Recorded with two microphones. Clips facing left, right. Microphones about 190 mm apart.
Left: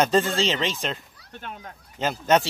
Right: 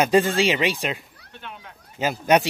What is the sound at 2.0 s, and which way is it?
Speech, 10° right (ahead or behind).